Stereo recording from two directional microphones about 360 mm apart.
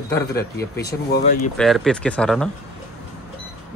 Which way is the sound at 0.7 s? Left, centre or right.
Left.